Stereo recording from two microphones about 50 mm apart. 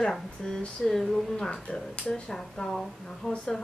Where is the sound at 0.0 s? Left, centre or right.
Centre.